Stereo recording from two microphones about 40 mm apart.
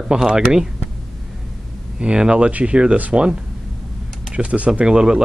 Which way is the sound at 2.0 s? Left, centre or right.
Right.